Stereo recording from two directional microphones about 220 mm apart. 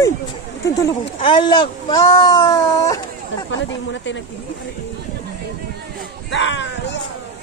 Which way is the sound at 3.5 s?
55° left (ahead or behind).